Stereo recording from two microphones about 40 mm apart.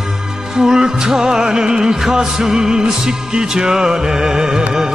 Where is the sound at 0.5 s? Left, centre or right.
Centre.